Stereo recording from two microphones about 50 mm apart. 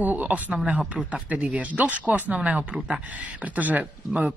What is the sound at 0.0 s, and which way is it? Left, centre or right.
Speech, right.